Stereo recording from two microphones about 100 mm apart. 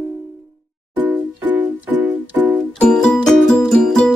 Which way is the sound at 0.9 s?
20° right (ahead or behind).